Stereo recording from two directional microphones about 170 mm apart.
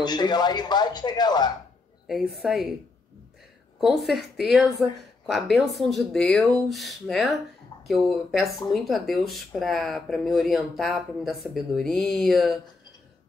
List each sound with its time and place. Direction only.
0.0 s speech: 25° left (ahead or behind)
2.0 s speech: centre (ahead or behind)
3.8 s speech: centre (ahead or behind)